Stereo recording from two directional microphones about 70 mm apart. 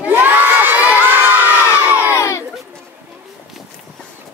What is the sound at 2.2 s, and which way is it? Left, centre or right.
Crowd, left.